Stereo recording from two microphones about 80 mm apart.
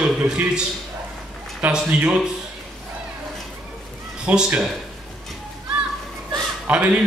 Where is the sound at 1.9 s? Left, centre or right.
Centre.